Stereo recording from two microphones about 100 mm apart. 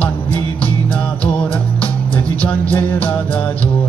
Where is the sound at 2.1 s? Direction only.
15° left (ahead or behind).